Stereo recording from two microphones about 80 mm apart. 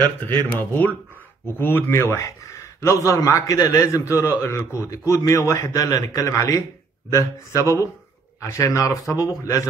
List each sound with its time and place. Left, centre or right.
0.3 s a man's voice: left